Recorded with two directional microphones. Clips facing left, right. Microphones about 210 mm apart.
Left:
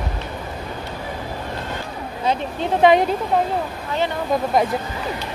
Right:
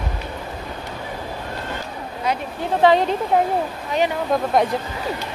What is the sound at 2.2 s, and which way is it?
Speech, 20° left (ahead or behind).